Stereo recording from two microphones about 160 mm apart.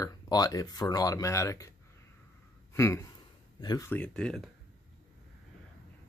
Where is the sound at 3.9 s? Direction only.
5° left (ahead or behind).